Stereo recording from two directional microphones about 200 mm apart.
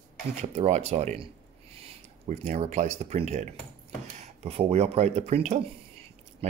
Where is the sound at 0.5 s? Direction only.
35° right (ahead or behind).